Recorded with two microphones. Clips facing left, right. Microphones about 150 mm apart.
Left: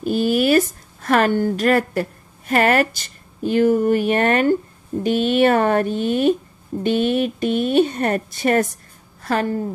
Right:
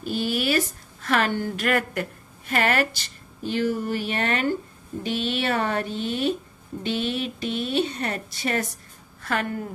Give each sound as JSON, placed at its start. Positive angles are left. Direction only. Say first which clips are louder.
{"t": 0.0, "sound": "a woman's voice", "louder": "left 8 dB", "side_deg": 45}
{"t": 9.2, "sound": "speech", "louder": "left 6 dB", "side_deg": 35}